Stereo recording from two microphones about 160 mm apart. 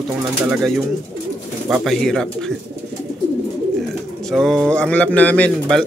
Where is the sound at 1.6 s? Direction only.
Centre (ahead or behind).